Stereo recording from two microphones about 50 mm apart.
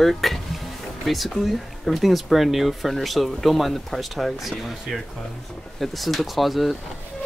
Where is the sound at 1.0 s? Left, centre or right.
Centre.